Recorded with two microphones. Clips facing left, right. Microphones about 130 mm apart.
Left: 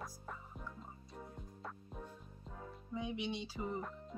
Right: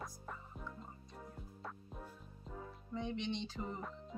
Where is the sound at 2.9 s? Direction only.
10° left (ahead or behind).